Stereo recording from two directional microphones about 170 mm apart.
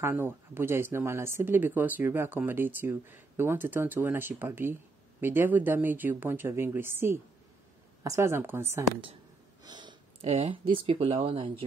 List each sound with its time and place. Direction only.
0.0 s speech: 15° right (ahead or behind)
9.6 s speech: 25° right (ahead or behind)